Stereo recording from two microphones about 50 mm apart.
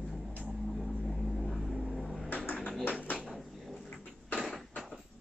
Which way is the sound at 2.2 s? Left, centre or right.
Left.